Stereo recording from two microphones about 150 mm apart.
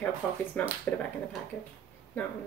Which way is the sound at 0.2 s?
Centre (ahead or behind).